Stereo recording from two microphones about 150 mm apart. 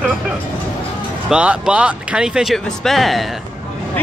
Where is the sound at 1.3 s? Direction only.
5° right (ahead or behind).